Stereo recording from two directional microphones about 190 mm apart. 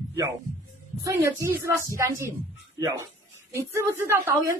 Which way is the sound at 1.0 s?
15° right (ahead or behind).